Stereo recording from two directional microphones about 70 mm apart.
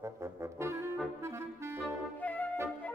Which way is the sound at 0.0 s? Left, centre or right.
Right.